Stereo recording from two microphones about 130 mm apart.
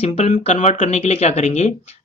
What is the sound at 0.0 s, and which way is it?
Speech, 55° left (ahead or behind).